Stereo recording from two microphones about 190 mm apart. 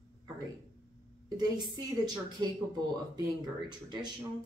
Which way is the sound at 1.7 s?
20° right (ahead or behind).